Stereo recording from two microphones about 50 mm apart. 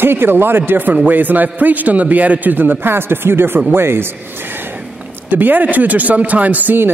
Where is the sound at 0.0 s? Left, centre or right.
Right.